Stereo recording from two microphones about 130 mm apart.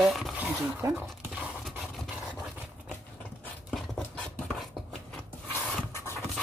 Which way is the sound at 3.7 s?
5° left (ahead or behind).